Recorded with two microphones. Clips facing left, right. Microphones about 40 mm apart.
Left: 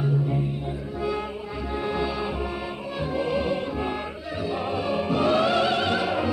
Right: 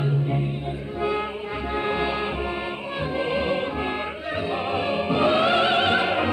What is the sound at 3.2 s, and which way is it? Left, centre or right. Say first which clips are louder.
Music: right 1 dB; right.